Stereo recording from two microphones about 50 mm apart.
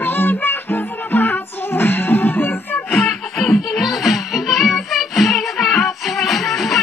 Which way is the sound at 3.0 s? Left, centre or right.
Centre.